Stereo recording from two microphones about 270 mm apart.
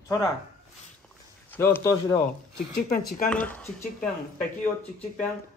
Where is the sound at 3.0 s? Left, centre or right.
Left.